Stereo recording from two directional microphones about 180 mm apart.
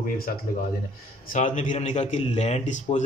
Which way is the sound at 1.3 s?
45° left (ahead or behind).